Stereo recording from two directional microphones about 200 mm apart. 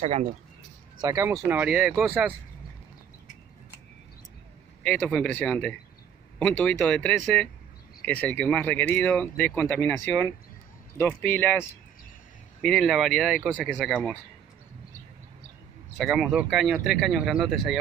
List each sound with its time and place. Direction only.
0.0 s speech: 35° right (ahead or behind)
1.0 s speech: 15° right (ahead or behind)
4.8 s speech: 5° left (ahead or behind)
12.6 s speech: centre (ahead or behind)
16.0 s speech: centre (ahead or behind)